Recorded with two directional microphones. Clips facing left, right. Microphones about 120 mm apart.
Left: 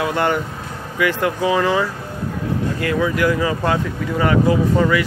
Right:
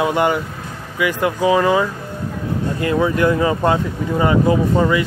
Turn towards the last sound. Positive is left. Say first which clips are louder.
# right 1 dB
turn(degrees=-25)  # may be behind; listen again after turning